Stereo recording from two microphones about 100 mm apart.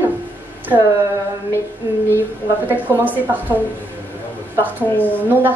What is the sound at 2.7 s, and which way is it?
Speech, 15° right (ahead or behind).